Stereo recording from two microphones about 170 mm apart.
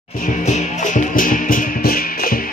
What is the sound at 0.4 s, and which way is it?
Music, 40° left (ahead or behind).